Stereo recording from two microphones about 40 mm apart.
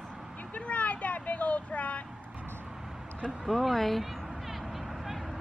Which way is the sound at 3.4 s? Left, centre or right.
Centre.